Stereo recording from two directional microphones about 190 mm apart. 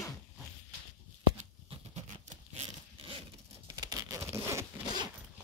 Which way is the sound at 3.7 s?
20° right (ahead or behind).